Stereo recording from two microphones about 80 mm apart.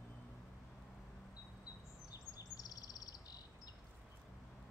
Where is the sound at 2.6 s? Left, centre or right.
Left.